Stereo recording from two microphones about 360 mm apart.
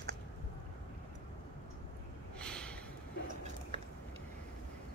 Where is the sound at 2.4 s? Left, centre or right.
Centre.